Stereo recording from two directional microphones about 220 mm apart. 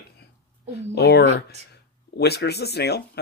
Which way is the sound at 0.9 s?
45° left (ahead or behind).